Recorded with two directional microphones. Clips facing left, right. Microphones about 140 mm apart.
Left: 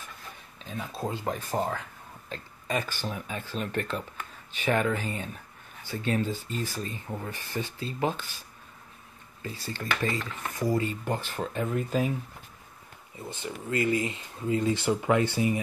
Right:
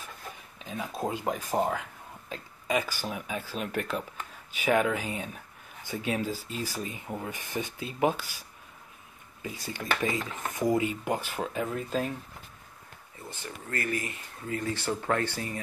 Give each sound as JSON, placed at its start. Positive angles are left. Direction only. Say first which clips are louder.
{"t": 0.7, "sound": "dishes", "louder": "right 1 dB", "side_deg": -15}
{"t": 4.2, "sound": "speech", "louder": "even", "side_deg": -10}
{"t": 5.9, "sound": "dishes", "louder": "left 2 dB", "side_deg": -10}
{"t": 13.3, "sound": "speech", "louder": "left 5 dB", "side_deg": 20}